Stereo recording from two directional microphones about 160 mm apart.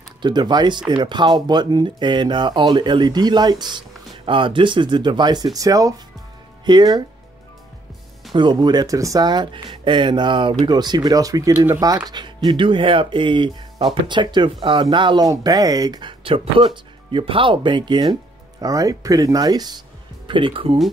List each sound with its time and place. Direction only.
0.2 s speech: 25° right (ahead or behind)
8.3 s speech: 30° right (ahead or behind)